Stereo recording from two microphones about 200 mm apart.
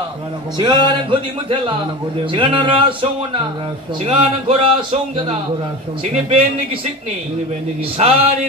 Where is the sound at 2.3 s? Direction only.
25° right (ahead or behind).